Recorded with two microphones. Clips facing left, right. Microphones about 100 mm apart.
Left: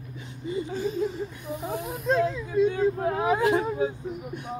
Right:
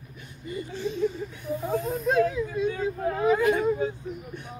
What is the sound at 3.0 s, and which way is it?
Speech, 20° left (ahead or behind).